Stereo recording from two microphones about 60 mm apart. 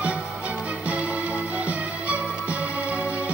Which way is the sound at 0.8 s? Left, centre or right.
Right.